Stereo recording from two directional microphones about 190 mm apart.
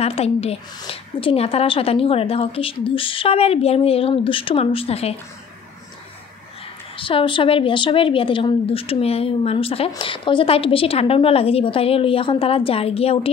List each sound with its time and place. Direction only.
0.0 s a woman's voice: 35° left (ahead or behind)
7.0 s speech: 25° left (ahead or behind)